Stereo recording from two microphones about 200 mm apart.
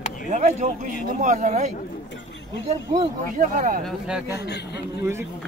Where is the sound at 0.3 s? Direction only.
35° right (ahead or behind).